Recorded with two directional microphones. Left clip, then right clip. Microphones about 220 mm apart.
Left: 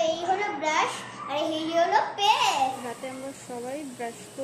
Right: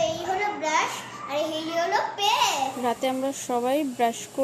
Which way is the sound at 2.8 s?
40° right (ahead or behind).